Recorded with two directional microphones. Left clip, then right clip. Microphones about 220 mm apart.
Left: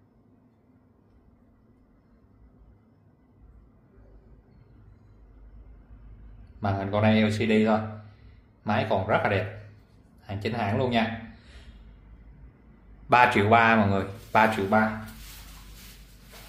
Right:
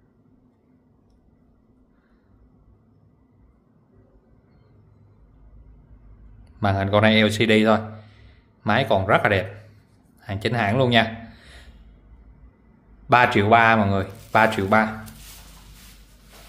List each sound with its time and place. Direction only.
6.6 s a man's voice: 40° right (ahead or behind)
13.1 s speech: 20° right (ahead or behind)